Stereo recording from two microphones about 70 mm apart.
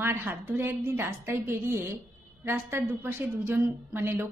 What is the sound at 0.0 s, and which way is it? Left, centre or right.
A woman's voice, right.